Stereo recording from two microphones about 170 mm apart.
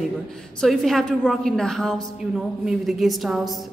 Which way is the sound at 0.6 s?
Centre (ahead or behind).